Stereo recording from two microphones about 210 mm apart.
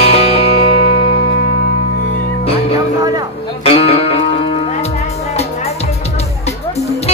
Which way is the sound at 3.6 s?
30° left (ahead or behind).